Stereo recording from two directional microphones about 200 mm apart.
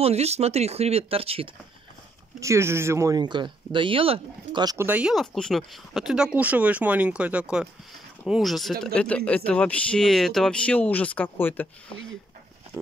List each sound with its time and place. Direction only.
0.0 s speech: 30° right (ahead or behind)
2.4 s speech: 15° right (ahead or behind); by 11.6 s 10° left (ahead or behind)